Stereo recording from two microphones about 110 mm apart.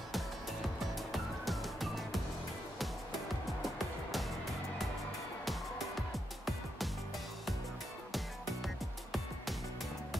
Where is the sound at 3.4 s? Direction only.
Centre (ahead or behind).